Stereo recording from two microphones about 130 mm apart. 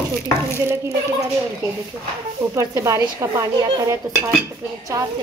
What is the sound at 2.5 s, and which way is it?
Speech, 25° right (ahead or behind).